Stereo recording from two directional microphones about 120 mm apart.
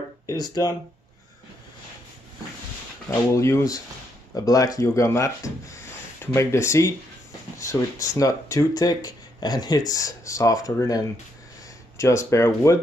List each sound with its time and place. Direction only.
0.3 s speech: 30° left (ahead or behind)
3.1 s speech: 25° left (ahead or behind)
12.0 s speech: 25° left (ahead or behind)